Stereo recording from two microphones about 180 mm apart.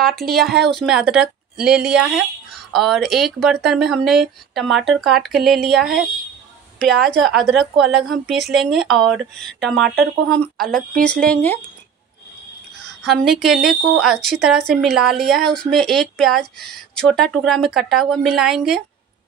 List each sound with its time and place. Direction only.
0.0 s speech: centre (ahead or behind)
6.8 s speech: 5° left (ahead or behind)
10.6 s speech: 60° right (ahead or behind)
11.1 s speech: 5° left (ahead or behind)
13.0 s speech: centre (ahead or behind)